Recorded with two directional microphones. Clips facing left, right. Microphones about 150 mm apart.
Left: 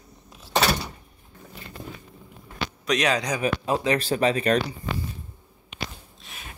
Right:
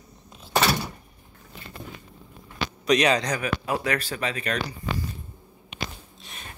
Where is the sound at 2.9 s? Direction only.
Centre (ahead or behind).